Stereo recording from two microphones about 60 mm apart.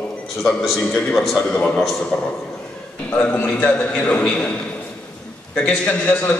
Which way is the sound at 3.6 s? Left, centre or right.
Left.